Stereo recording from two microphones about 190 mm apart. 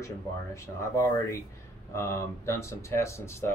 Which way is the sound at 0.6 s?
15° left (ahead or behind).